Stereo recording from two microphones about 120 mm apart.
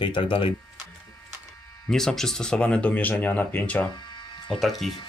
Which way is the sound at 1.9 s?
5° left (ahead or behind).